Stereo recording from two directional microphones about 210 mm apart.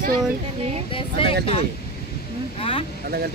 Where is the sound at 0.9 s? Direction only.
25° left (ahead or behind).